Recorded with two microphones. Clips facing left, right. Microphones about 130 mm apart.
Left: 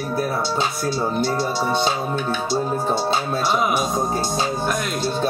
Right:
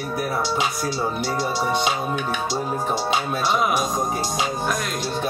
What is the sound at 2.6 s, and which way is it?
Music, 25° left (ahead or behind).